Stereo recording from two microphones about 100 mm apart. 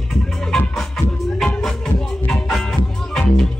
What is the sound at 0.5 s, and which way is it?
Music, 5° left (ahead or behind).